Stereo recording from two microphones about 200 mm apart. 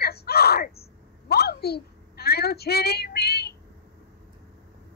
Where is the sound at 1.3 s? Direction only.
50° left (ahead or behind).